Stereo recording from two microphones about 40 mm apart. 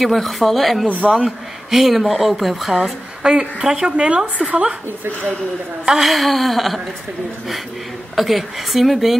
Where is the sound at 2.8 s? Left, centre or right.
Centre.